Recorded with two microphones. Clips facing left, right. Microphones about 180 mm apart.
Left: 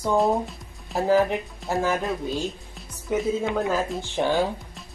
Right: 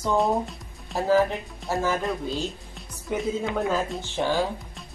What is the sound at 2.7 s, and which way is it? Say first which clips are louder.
Speech: left 3 dB; centre (ahead or behind).